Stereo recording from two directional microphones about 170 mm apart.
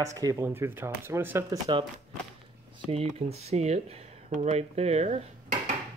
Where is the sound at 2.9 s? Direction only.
35° right (ahead or behind).